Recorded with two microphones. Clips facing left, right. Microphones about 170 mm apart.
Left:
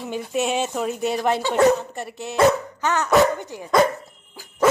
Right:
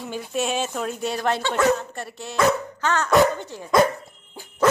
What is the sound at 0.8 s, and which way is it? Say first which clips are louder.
Speech: left 3 dB; centre (ahead or behind).